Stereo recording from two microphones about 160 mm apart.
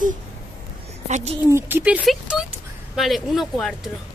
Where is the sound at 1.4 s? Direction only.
15° right (ahead or behind); by 3.8 s centre (ahead or behind).